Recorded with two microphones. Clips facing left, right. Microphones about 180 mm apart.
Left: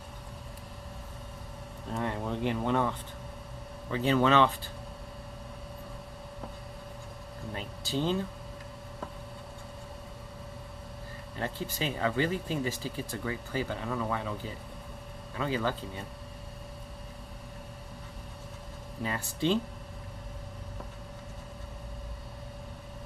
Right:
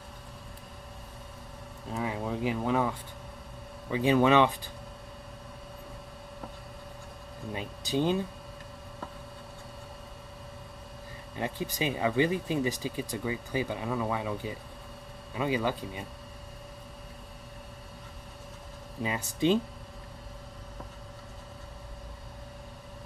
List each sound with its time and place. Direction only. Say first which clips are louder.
1.9 s a sound: even; 5° right (ahead or behind)
3.9 s speech: right 2 dB; 15° right (ahead or behind)
7.5 s speech: right 3 dB; 15° right (ahead or behind)
11.3 s speech: right 2 dB; 15° right (ahead or behind)
19.0 s speech: right 3 dB; 15° right (ahead or behind)